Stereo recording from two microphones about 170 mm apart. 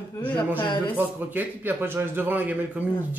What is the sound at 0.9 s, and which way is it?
A man's voice, 10° right (ahead or behind).